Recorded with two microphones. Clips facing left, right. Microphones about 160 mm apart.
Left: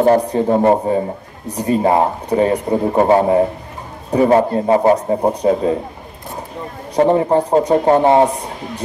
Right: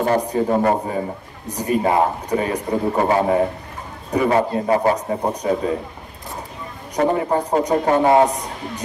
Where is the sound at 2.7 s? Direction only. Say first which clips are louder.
Left 4 dB; 30° left (ahead or behind).